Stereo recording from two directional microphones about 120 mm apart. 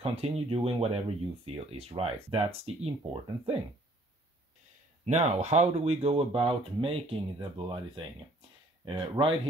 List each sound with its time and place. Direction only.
0.0 s speech: 55° right (ahead or behind)
5.0 s speech: 65° right (ahead or behind); by 8.0 s 45° right (ahead or behind)
9.2 s speech: 25° right (ahead or behind)